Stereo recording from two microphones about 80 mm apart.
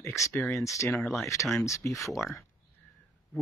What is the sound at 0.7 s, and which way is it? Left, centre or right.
Speech, left.